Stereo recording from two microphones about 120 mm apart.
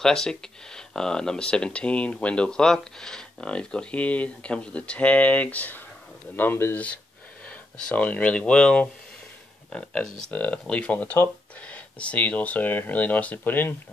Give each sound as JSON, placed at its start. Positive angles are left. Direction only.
{"t": 0.0, "sound": "speech", "side_deg": 5}